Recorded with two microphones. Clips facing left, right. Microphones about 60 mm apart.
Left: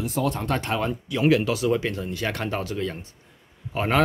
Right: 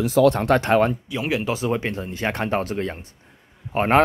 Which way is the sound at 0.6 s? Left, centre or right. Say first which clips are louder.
Right 9 dB; right.